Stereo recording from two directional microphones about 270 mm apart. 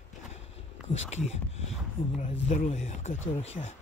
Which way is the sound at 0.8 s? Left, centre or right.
Left.